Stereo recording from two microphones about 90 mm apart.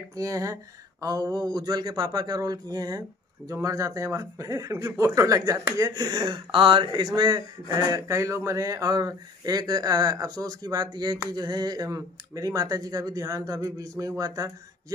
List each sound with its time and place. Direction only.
0.1 s speech: 40° right (ahead or behind); by 7.1 s 65° right (ahead or behind)
7.2 s speech: 50° right (ahead or behind)